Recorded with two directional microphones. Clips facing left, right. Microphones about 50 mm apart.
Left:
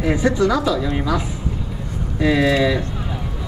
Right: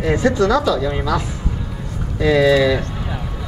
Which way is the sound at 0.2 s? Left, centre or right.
Left.